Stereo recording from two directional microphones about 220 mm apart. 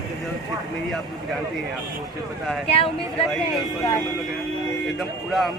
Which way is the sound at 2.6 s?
25° left (ahead or behind).